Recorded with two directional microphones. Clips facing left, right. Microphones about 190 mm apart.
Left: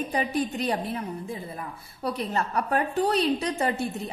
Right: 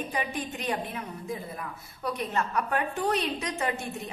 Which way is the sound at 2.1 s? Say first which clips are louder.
Left 2 dB; 35° left (ahead or behind).